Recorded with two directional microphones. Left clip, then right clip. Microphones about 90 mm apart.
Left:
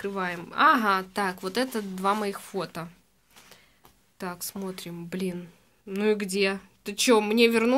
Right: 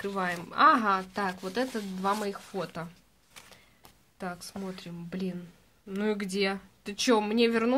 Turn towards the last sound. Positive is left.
turn(degrees=15)  # may be behind; listen again after turning